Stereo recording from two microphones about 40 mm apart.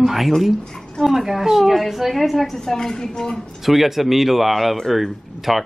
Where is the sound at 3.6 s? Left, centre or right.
Centre.